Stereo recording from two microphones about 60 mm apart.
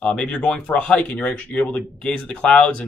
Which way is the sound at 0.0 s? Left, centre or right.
Centre.